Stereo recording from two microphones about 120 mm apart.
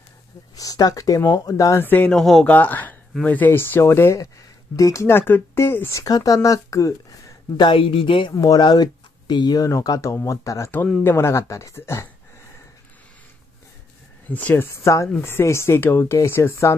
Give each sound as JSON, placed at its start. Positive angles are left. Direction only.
{"t": 0.6, "sound": "speech", "side_deg": 30}
{"t": 1.9, "sound": "speech", "side_deg": 15}
{"t": 2.1, "sound": "speech", "side_deg": 0}
{"t": 2.4, "sound": "speech", "side_deg": 15}
{"t": 14.3, "sound": "speech", "side_deg": 15}